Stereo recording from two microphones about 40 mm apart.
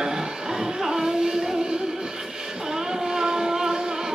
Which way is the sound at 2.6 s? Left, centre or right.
Centre.